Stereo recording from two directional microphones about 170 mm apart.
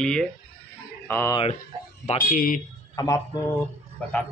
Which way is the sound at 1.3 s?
35° left (ahead or behind).